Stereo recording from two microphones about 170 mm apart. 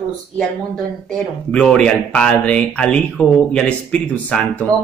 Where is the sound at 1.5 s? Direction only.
5° left (ahead or behind).